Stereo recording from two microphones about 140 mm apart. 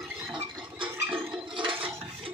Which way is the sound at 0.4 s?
40° right (ahead or behind).